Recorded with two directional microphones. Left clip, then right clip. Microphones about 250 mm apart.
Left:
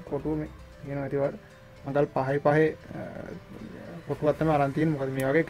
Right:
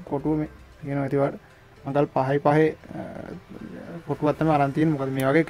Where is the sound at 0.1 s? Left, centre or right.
Centre.